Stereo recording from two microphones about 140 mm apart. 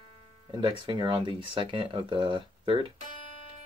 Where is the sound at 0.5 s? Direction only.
35° right (ahead or behind).